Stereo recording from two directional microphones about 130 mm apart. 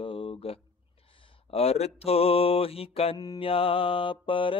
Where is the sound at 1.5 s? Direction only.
50° left (ahead or behind).